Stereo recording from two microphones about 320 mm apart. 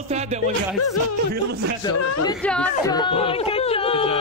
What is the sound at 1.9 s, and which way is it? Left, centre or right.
Speech, left.